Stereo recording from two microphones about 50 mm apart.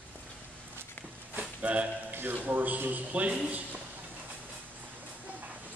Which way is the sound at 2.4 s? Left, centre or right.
Right.